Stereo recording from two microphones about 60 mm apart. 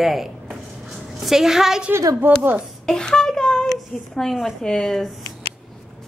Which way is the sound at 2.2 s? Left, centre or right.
Right.